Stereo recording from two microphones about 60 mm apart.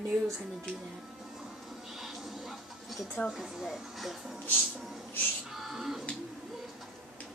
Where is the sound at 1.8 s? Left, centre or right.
Centre.